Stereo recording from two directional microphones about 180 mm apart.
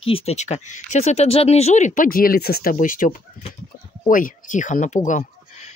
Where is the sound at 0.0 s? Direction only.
35° left (ahead or behind).